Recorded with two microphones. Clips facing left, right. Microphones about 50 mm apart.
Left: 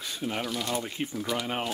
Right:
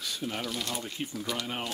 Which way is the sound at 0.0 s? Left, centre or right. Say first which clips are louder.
Left 2 dB; left.